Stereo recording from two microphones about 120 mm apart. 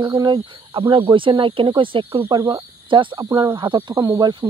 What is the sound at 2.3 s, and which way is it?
Speech, 35° right (ahead or behind).